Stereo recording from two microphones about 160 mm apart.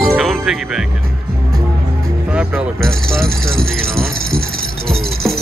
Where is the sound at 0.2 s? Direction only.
Centre (ahead or behind).